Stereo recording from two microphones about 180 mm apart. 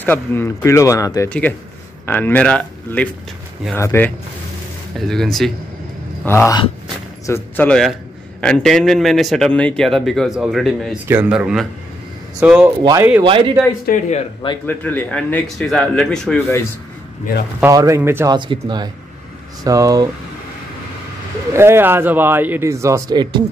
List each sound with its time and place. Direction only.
0.0 s speech: 10° left (ahead or behind)
4.9 s a man's voice: centre (ahead or behind)
6.2 s a man's voice: 15° left (ahead or behind); by 12.7 s 10° right (ahead or behind)
13.2 s speech: 25° right (ahead or behind)
14.1 s speech: 30° left (ahead or behind)
14.7 s a man's voice: 10° left (ahead or behind)
17.6 s speech: 15° right (ahead or behind)
18.3 s speech: 25° right (ahead or behind)
21.5 s speech: 15° right (ahead or behind)